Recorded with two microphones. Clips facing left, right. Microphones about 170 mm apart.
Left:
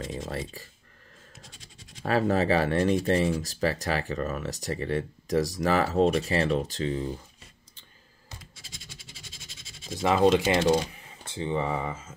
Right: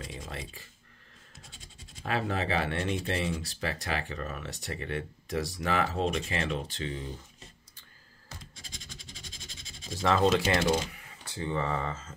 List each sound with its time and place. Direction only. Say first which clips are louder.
2.0 s speech: left 7 dB; 40° left (ahead or behind)
8.4 s scratch: right 1 dB; 5° left (ahead or behind)
10.0 s speech: left 4 dB; 15° left (ahead or behind)